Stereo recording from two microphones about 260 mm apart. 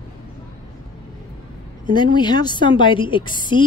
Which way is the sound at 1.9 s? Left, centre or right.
Centre.